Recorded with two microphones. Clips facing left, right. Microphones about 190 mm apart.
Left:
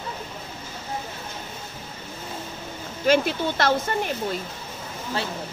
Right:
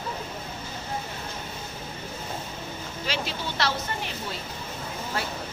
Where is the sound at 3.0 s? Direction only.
50° left (ahead or behind).